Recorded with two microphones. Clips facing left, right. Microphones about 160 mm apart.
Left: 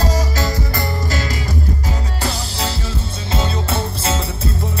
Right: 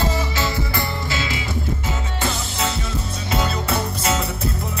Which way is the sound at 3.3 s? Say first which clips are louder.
Left 1 dB; 25° left (ahead or behind).